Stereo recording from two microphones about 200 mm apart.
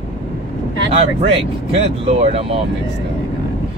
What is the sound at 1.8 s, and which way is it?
Speech, 30° right (ahead or behind).